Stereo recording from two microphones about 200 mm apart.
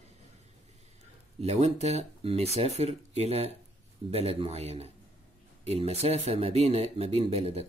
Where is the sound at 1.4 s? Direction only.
30° right (ahead or behind).